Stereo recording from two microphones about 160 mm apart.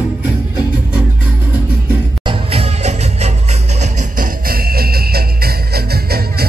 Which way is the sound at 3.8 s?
60° right (ahead or behind).